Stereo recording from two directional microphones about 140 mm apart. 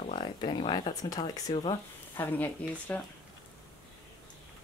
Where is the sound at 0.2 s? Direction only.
35° left (ahead or behind).